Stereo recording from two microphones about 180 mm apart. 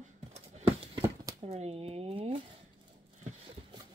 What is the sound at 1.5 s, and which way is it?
Speech, 35° right (ahead or behind).